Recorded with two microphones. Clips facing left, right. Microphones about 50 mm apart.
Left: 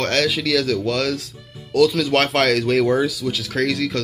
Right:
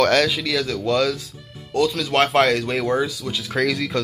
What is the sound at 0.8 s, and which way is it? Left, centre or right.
Speech, left.